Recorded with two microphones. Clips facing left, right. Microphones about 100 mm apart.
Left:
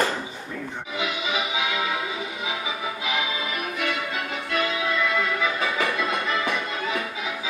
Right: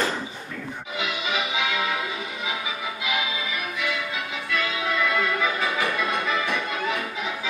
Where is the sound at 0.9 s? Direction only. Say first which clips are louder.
Left 1 dB; 20° left (ahead or behind).